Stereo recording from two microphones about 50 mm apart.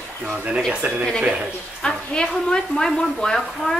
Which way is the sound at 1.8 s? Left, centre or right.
Centre.